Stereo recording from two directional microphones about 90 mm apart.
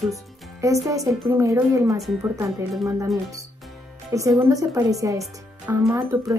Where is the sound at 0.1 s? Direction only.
35° right (ahead or behind).